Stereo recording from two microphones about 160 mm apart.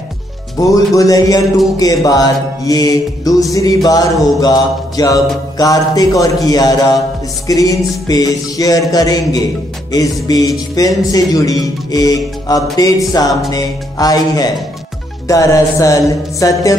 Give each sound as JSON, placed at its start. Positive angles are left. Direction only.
{"t": 0.6, "sound": "music", "side_deg": 20}